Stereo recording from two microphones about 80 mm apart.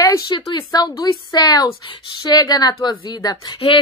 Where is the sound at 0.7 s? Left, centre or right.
Left.